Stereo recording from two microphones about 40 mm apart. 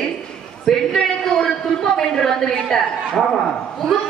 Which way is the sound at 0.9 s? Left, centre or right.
Centre.